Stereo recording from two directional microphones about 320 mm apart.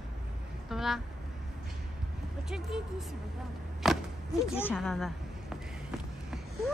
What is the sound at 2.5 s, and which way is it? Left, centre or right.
Speech, centre.